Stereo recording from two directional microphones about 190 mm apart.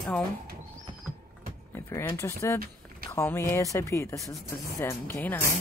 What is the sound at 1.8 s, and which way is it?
Speech, 15° left (ahead or behind).